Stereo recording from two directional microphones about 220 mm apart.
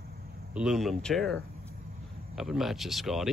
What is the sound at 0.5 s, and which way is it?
Speech, centre (ahead or behind).